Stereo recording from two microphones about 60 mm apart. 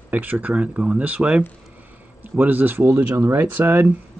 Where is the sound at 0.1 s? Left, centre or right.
Right.